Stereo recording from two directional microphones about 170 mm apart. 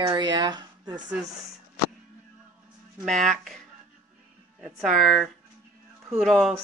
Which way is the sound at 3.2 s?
Centre (ahead or behind).